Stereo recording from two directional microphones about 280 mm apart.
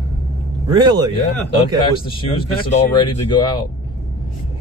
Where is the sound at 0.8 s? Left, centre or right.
Centre.